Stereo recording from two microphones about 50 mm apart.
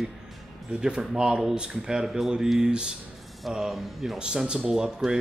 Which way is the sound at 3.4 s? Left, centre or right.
Centre.